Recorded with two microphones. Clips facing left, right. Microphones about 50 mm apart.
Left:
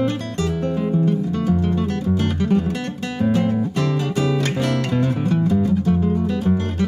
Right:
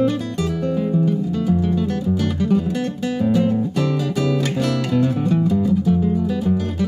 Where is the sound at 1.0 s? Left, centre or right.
Left.